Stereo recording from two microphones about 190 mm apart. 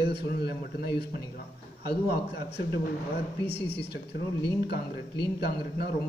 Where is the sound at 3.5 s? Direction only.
60° left (ahead or behind).